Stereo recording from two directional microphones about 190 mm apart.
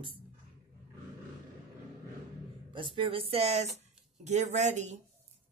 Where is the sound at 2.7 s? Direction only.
25° right (ahead or behind).